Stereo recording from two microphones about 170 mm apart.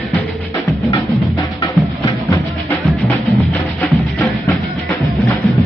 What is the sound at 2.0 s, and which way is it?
Music, 15° left (ahead or behind).